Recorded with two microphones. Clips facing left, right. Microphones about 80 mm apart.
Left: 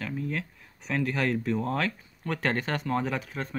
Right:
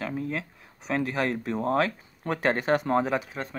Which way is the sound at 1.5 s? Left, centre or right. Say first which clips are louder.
Right 3 dB; right.